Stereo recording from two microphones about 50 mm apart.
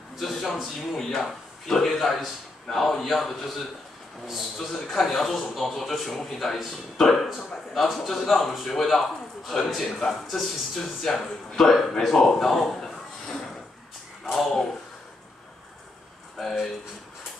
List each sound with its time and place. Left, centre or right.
0.2 s a man's voice: centre
16.3 s speech: centre